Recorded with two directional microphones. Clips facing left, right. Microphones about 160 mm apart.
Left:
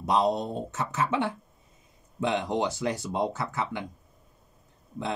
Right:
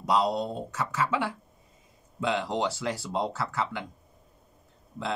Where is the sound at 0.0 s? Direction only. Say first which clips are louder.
Left 1 dB; 20° left (ahead or behind).